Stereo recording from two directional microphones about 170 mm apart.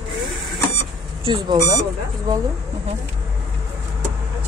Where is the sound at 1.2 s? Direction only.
30° right (ahead or behind).